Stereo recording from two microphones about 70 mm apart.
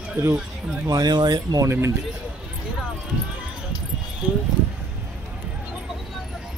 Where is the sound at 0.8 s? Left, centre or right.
Right.